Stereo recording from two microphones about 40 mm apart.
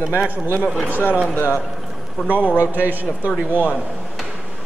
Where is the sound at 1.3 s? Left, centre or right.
Left.